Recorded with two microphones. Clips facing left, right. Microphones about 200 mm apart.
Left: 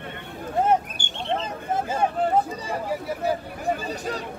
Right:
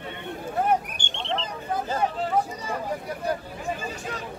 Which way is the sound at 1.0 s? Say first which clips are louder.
Even; 10° left (ahead or behind).